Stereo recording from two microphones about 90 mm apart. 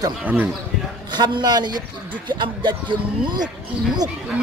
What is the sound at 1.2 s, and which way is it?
Speech, 50° right (ahead or behind).